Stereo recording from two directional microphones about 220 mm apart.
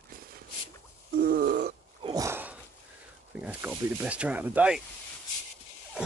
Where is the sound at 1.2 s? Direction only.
45° right (ahead or behind).